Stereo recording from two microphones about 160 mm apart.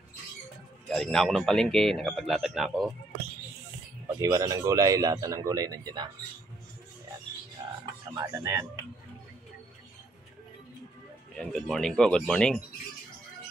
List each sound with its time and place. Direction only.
0.8 s a man's voice: centre (ahead or behind)
4.2 s speech: 20° right (ahead or behind)
8.2 s speech: 20° right (ahead or behind)
11.3 s a man's voice: centre (ahead or behind)